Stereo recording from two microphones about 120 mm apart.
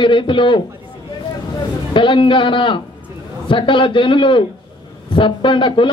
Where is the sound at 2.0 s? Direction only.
45° left (ahead or behind).